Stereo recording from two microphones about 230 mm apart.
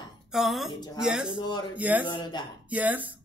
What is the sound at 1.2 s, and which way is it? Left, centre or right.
Speech, centre.